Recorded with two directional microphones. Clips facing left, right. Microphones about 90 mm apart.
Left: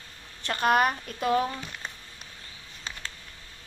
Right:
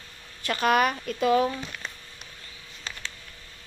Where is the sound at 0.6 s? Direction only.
25° left (ahead or behind).